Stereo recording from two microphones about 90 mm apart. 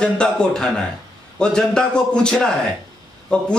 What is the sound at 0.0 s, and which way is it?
A man's voice, 10° left (ahead or behind).